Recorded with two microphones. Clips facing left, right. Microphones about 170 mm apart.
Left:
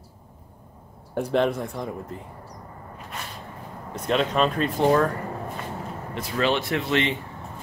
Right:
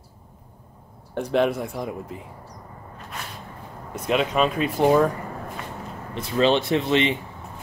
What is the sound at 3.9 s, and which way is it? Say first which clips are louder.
Speech: right 1 dB; 5° right (ahead or behind).